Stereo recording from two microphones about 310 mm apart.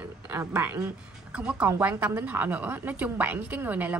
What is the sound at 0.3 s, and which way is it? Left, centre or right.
A woman's voice, centre.